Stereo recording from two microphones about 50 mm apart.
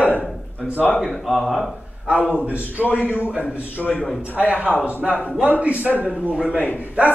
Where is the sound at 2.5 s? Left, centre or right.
Right.